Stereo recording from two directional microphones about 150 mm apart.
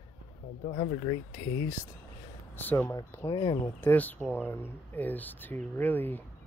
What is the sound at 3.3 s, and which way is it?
Speech, 30° left (ahead or behind).